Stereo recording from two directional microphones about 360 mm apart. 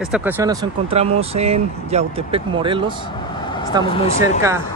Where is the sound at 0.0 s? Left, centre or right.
Centre.